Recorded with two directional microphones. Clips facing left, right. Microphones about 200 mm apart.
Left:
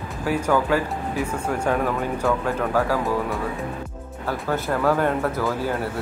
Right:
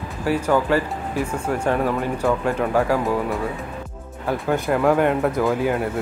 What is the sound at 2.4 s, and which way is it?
Speech, 15° right (ahead or behind).